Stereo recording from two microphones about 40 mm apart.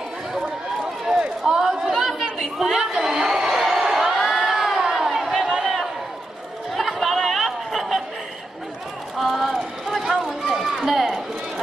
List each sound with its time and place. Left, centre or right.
1.4 s chatter: centre
2.9 s a sound: centre
3.5 s crowd: centre
6.7 s chatter: centre
9.2 s run: centre